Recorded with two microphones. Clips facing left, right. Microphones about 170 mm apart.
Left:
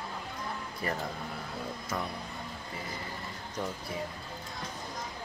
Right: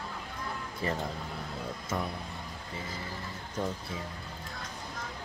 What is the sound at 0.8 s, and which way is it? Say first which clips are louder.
Speech: right 2 dB; 25° right (ahead or behind).